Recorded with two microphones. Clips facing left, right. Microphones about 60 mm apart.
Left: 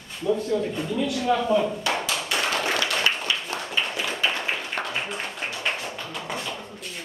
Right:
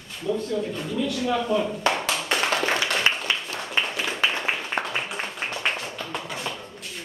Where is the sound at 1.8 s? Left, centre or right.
Right.